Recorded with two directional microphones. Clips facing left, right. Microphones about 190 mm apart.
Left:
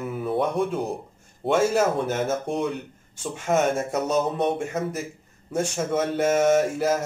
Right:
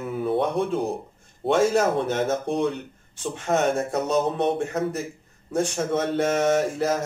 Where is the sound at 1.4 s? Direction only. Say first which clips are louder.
Right 1 dB; 5° left (ahead or behind).